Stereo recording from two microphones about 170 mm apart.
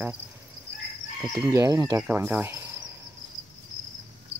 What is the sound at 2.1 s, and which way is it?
Cricket, 10° right (ahead or behind).